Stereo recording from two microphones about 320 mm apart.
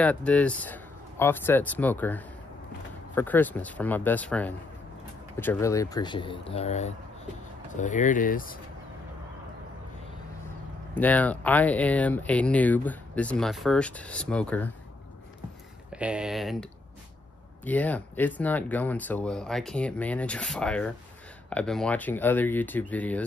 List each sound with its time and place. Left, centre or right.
0.0 s speech: centre; by 8.5 s left
11.0 s speech: centre
15.9 s speech: centre
17.6 s speech: centre